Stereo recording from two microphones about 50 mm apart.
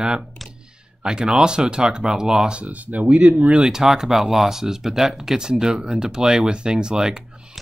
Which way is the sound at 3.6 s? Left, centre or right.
Centre.